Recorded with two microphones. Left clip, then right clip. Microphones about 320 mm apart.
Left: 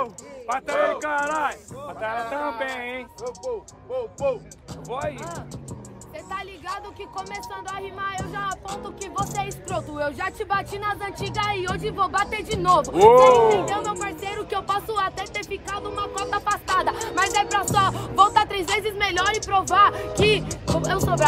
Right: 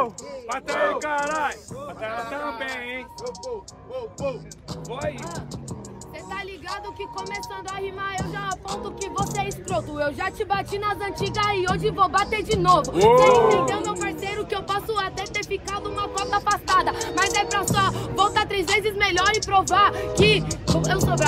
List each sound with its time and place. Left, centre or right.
0.5 s speech: centre
7.6 s speech: centre
13.0 s speech: centre
13.5 s speech: centre